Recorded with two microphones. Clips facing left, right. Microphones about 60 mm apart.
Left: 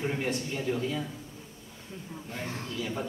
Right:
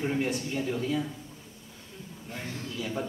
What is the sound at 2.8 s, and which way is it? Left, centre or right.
Speech, centre.